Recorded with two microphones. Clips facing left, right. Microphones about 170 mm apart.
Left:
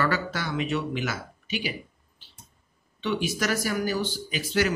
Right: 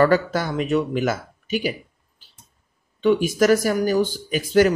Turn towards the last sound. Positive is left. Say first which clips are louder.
# right 9 dB
turn(degrees=-45)  # may be behind; listen again after turning